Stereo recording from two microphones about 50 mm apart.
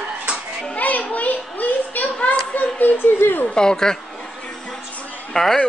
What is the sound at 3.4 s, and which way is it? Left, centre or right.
Speech, centre.